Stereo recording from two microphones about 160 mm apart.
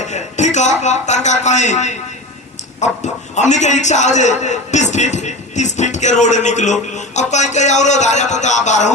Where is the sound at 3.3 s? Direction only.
45° left (ahead or behind).